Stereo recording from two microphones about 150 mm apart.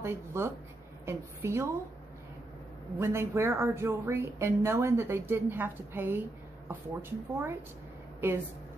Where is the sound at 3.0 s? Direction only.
15° right (ahead or behind).